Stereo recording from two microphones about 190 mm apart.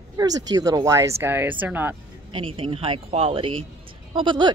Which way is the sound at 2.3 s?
30° right (ahead or behind).